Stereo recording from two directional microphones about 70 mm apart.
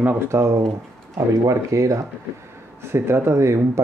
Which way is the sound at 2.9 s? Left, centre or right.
Right.